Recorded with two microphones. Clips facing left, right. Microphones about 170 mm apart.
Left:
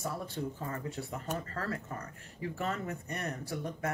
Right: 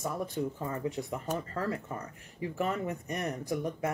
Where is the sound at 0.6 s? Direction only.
15° right (ahead or behind).